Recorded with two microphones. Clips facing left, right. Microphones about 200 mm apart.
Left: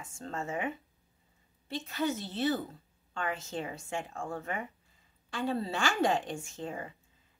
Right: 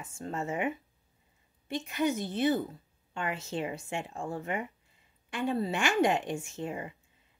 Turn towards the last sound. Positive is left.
turn(degrees=-20)  # may be behind; listen again after turning